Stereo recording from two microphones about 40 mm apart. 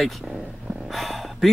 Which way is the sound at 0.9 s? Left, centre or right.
Centre.